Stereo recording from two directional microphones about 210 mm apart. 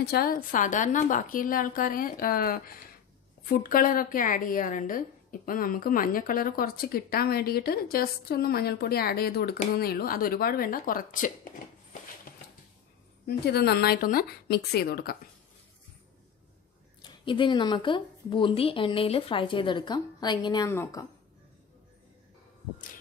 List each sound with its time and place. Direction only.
0.0 s a woman's voice: 45° left (ahead or behind)
13.5 s a woman's voice: 50° left (ahead or behind)
17.0 s speech: 25° left (ahead or behind)